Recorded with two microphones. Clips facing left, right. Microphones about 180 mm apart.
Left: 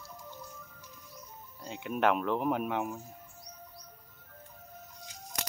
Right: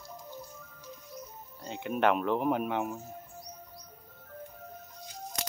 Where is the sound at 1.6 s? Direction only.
5° left (ahead or behind).